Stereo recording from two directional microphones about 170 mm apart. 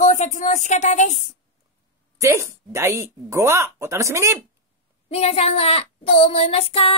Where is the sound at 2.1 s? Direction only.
15° right (ahead or behind).